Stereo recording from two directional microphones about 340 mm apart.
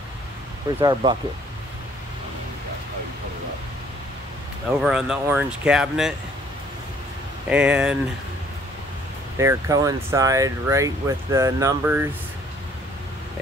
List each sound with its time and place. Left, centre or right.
0.7 s speech: centre
4.8 s speech: centre
7.4 s speech: centre
9.4 s speech: centre